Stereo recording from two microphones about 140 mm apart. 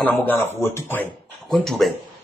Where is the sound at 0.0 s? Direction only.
10° left (ahead or behind).